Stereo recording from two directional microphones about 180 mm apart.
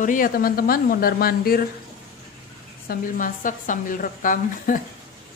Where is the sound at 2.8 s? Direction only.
50° left (ahead or behind).